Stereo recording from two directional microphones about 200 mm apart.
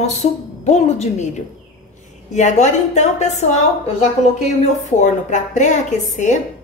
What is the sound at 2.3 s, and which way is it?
A woman's voice, 35° left (ahead or behind).